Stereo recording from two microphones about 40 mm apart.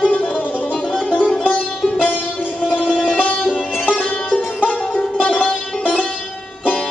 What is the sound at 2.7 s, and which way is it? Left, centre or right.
Music, left.